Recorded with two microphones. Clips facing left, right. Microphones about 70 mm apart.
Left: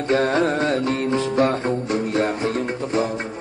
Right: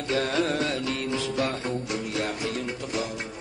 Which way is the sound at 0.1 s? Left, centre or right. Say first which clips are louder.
Left 7 dB; left.